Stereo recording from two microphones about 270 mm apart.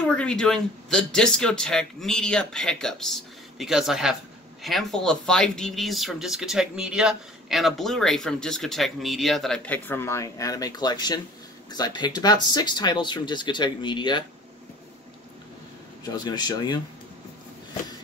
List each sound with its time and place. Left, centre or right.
0.0 s speech: centre
16.1 s speech: centre